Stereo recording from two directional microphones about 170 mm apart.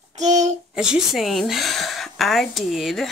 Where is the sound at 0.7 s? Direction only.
5° right (ahead or behind).